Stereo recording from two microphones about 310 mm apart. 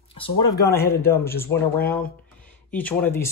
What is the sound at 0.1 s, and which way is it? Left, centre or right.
Speech, centre.